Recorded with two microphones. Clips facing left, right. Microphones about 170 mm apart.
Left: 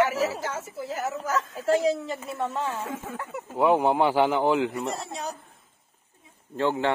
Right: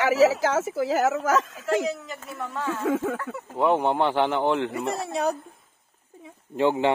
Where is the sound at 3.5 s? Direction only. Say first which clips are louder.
Left 1 dB; centre (ahead or behind).